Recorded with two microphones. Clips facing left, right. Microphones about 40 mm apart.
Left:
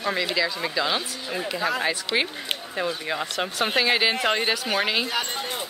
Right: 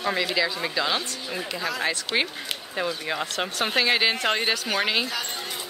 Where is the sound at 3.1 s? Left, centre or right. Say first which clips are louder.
Left 1 dB; centre.